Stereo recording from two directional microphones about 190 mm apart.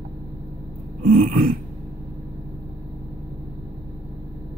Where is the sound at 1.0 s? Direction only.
45° right (ahead or behind).